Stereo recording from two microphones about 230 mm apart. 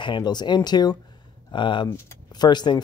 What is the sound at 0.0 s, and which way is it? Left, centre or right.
Speech, centre.